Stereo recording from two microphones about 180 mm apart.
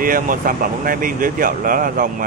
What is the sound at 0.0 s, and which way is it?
Speech, 50° right (ahead or behind).